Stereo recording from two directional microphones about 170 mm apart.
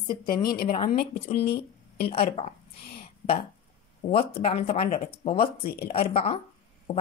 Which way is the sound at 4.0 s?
35° left (ahead or behind).